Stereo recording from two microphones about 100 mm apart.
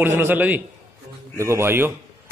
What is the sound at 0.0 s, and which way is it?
A man's voice, 25° right (ahead or behind).